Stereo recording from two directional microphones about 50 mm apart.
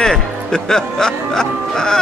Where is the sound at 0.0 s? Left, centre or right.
Centre.